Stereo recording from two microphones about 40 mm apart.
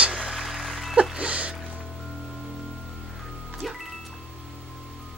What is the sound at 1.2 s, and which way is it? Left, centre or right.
Music, right.